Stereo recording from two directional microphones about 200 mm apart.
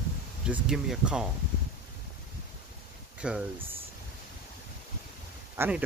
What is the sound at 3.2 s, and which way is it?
Speech, 5° right (ahead or behind).